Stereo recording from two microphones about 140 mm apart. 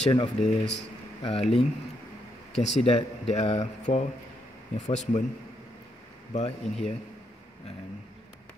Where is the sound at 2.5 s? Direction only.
45° left (ahead or behind).